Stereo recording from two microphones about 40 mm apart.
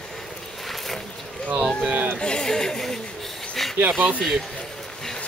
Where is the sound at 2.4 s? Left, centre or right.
Centre.